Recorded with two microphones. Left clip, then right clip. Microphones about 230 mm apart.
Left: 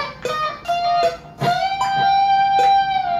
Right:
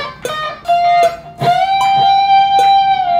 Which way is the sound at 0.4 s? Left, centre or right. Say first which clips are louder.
Right 8 dB; right.